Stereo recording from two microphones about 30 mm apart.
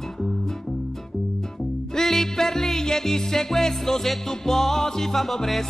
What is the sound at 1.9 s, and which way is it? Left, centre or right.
Music, centre.